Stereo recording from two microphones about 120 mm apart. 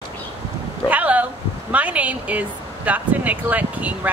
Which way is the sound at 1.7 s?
10° right (ahead or behind).